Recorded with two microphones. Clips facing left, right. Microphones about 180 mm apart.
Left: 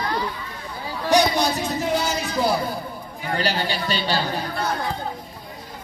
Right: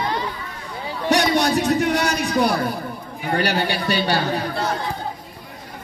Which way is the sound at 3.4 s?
65° right (ahead or behind).